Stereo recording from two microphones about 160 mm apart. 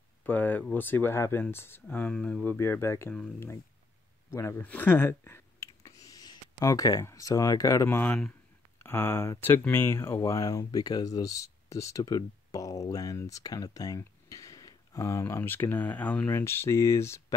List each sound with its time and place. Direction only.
0.2 s speech: 10° left (ahead or behind)